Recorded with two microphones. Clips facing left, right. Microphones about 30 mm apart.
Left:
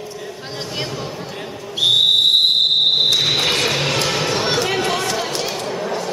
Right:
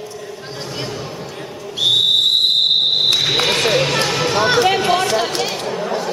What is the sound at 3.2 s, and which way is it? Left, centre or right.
Basketball bounce, centre.